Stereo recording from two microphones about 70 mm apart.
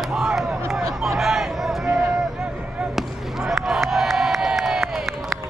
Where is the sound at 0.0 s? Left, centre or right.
Centre.